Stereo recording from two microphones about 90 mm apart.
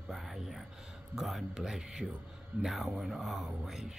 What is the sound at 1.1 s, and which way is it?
Speech, 5° right (ahead or behind).